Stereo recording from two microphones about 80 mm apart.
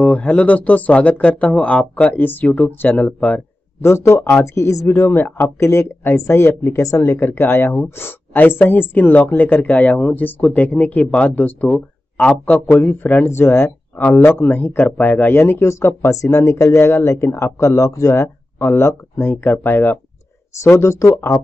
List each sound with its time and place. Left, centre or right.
0.0 s speech: centre
3.8 s speech: left
7.2 s a woman's voice: left
20.6 s speech: left